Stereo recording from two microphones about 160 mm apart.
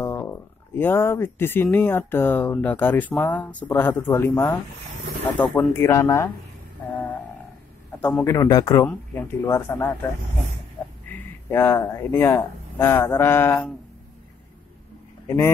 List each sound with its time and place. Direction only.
0.0 s speech: 15° left (ahead or behind)
8.0 s speech: 15° left (ahead or behind)
8.8 s speech: 10° left (ahead or behind)
11.1 s speech: 15° left (ahead or behind)
15.2 s speech: 15° left (ahead or behind)